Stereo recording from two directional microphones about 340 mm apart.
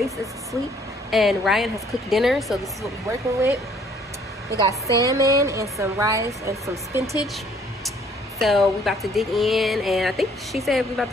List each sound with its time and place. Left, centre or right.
1.1 s speech: centre
5.0 s a woman's voice: centre
8.4 s speech: centre